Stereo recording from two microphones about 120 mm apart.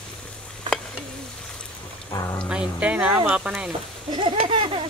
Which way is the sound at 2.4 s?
10° right (ahead or behind).